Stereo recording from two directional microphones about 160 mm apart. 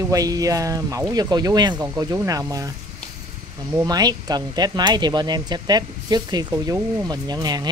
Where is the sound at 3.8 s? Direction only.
25° right (ahead or behind).